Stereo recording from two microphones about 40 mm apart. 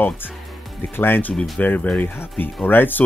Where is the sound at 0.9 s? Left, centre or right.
Left.